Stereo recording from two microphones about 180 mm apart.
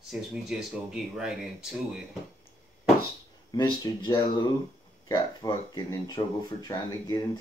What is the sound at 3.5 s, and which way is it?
Speech, 25° left (ahead or behind).